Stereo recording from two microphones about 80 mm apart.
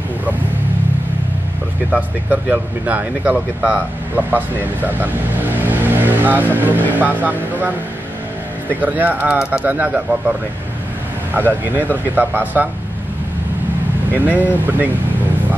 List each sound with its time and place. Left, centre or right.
1.9 s speech: centre
8.8 s speech: right
11.7 s speech: right
14.2 s speech: right